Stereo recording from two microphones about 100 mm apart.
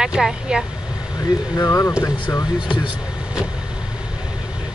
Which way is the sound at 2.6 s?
50° left (ahead or behind).